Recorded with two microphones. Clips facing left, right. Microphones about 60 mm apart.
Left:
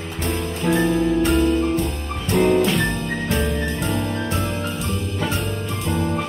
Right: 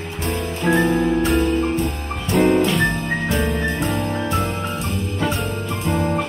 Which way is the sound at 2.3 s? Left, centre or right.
Centre.